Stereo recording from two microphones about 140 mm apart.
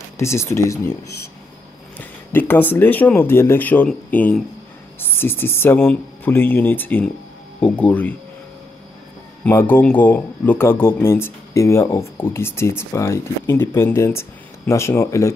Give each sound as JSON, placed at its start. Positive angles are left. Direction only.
{"t": 0.2, "sound": "speech", "side_deg": 20}
{"t": 2.0, "sound": "speech", "side_deg": 15}
{"t": 9.4, "sound": "speech", "side_deg": 15}